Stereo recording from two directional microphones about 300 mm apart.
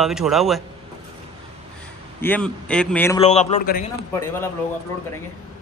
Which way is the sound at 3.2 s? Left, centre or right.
Left.